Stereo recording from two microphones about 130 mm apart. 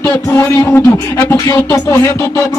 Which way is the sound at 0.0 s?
15° left (ahead or behind).